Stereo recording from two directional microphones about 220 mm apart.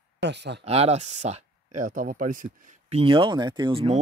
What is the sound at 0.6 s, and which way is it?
Speech, 30° right (ahead or behind).